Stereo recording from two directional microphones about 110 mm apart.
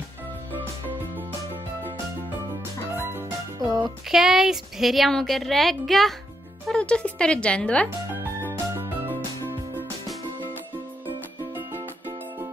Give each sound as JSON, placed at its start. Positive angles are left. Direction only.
{"t": 3.0, "sound": "music", "side_deg": -20}
{"t": 3.5, "sound": "music", "side_deg": -35}
{"t": 4.1, "sound": "a woman's voice", "side_deg": -5}
{"t": 8.1, "sound": "music", "side_deg": -20}
{"t": 11.1, "sound": "music", "side_deg": -15}